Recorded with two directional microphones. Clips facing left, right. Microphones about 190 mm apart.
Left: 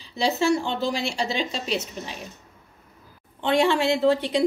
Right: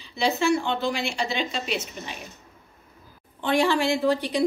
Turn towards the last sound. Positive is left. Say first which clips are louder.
# left 2 dB
turn(degrees=25)  # may be behind; listen again after turning